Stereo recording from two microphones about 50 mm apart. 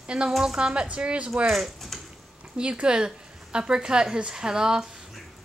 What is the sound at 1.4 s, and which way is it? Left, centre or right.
Speech, centre.